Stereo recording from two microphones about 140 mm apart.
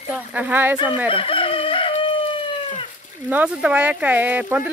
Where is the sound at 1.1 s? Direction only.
40° left (ahead or behind).